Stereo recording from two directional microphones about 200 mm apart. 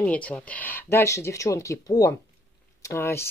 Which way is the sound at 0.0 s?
5° left (ahead or behind).